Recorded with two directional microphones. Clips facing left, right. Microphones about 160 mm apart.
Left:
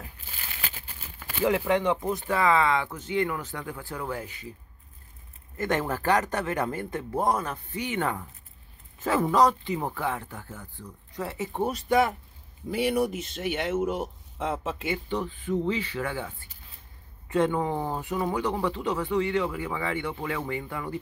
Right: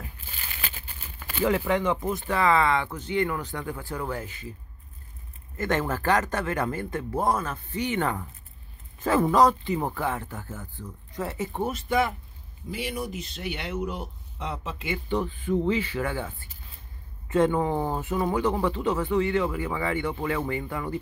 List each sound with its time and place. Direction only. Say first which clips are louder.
1.4 s speech: even; 20° left (ahead or behind); by 4.2 s 5° left (ahead or behind)
4.2 s speech: right 1 dB; 15° left (ahead or behind)
5.6 s speech: right 1 dB; 15° left (ahead or behind)
7.8 s speech: right 2 dB; 5° left (ahead or behind)
11.6 s speech: left 2 dB; 40° left (ahead or behind)
12.7 s speech: left 7 dB; 60° left (ahead or behind)
15.0 s speech: right 3 dB; 5° right (ahead or behind)